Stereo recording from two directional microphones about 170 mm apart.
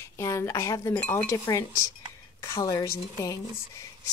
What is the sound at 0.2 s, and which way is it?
A woman's voice, 15° left (ahead or behind).